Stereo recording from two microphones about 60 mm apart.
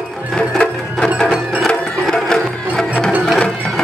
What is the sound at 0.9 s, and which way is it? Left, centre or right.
Music, centre.